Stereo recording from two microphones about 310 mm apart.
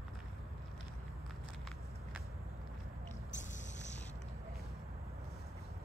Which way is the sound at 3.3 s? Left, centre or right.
Left.